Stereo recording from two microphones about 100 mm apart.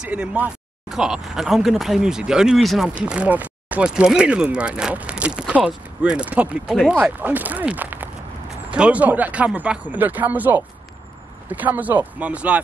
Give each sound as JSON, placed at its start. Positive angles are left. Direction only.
{"t": 0.0, "sound": "speech", "side_deg": -10}
{"t": 2.9, "sound": "speech", "side_deg": -10}
{"t": 6.7, "sound": "speech", "side_deg": 0}
{"t": 7.0, "sound": "speech", "side_deg": -15}